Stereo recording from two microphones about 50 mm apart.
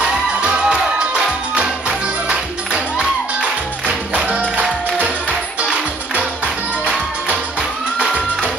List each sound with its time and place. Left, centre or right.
0.4 s music: centre
8.0 s music: right